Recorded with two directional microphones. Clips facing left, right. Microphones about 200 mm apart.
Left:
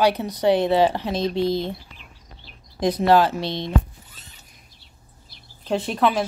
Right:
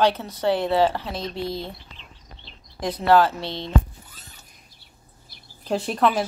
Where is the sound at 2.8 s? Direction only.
20° left (ahead or behind).